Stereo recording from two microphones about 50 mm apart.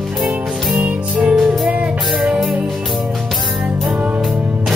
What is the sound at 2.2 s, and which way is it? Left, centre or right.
Music, centre.